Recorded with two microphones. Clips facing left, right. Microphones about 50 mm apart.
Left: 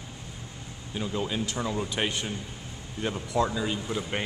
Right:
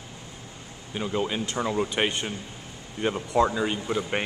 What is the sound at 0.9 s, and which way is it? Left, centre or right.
Speech, right.